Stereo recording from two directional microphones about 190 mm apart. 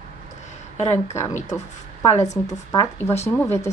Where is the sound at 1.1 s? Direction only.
40° left (ahead or behind).